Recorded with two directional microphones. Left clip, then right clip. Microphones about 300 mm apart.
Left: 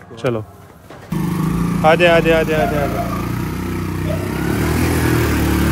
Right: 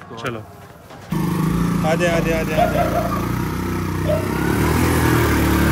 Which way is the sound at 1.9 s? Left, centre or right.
Left.